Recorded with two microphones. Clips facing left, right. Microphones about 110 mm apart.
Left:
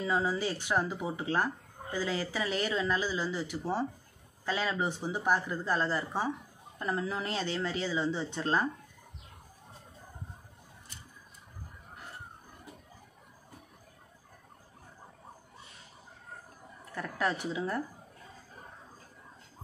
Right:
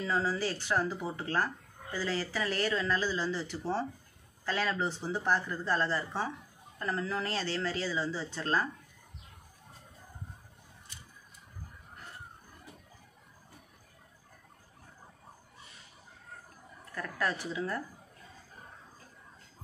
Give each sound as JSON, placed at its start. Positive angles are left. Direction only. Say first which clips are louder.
{"t": 0.0, "sound": "speech", "louder": "left 1 dB", "side_deg": 15}
{"t": 16.9, "sound": "a woman's voice", "louder": "left 2 dB", "side_deg": 20}